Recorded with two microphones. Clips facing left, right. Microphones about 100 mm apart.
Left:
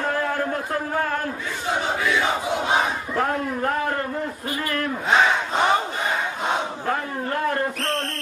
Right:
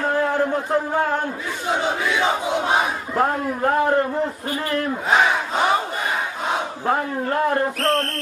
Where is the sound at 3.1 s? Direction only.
25° right (ahead or behind).